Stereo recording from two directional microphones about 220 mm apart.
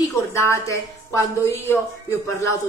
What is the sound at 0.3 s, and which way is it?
A man's voice, 15° left (ahead or behind).